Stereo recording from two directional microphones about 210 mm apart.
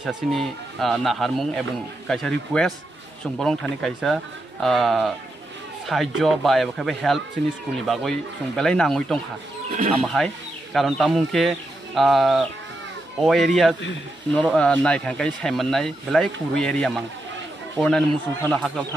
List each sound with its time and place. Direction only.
0.0 s speech: centre (ahead or behind)
9.7 s speech: 35° right (ahead or behind)
10.0 s speech: centre (ahead or behind)